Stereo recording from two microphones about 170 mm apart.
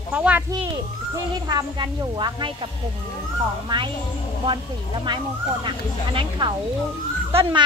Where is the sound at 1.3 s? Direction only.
25° right (ahead or behind).